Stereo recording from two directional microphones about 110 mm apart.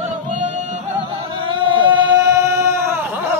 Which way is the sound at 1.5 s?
50° right (ahead or behind).